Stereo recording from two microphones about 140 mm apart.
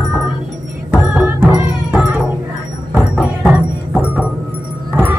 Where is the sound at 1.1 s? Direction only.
5° right (ahead or behind).